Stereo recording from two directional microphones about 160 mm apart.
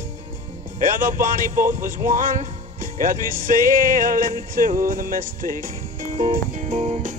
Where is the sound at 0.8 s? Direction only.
60° right (ahead or behind).